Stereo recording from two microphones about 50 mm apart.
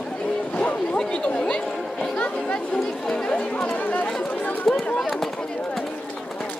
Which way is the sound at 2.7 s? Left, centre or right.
Centre.